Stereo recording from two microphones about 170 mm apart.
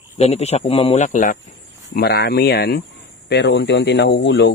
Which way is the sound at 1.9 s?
65° left (ahead or behind).